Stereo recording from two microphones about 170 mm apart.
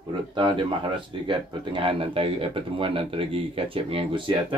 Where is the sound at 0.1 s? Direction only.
30° right (ahead or behind).